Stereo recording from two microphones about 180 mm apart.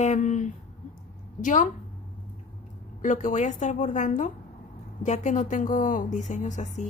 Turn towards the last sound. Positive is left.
turn(degrees=45)  # may be behind; listen again after turning